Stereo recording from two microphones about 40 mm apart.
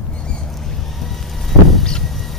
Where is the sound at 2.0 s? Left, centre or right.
Centre.